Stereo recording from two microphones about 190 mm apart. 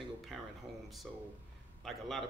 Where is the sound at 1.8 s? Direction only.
Centre (ahead or behind).